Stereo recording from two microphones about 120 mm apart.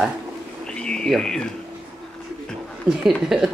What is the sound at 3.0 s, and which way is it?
Speech, centre (ahead or behind).